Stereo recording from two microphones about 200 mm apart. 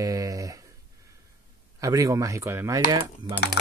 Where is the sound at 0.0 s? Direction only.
15° right (ahead or behind).